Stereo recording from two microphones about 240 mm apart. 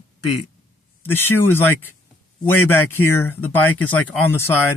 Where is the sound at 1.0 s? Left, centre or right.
Centre.